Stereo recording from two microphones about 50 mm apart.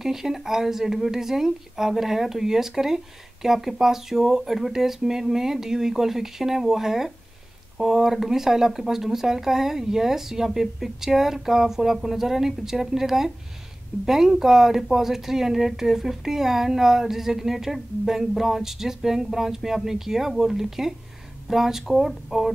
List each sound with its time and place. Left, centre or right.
0.0 s speech: centre